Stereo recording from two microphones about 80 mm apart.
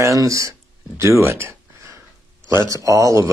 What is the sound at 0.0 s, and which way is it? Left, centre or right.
Speech, right.